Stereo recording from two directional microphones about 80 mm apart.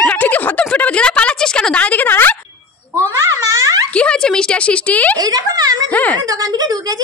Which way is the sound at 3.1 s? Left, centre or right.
Right.